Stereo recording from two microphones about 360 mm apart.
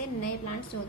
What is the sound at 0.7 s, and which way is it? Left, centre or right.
Speech, left.